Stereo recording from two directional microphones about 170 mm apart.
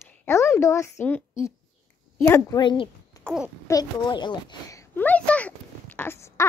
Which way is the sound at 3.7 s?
25° left (ahead or behind).